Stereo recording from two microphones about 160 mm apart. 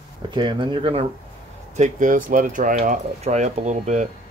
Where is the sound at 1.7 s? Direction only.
50° right (ahead or behind).